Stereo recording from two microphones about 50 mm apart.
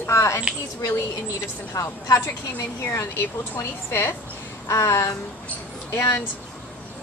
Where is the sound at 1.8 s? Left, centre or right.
Left.